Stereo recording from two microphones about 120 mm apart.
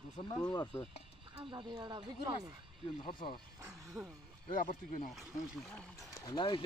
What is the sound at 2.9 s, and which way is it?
Speech, 40° left (ahead or behind).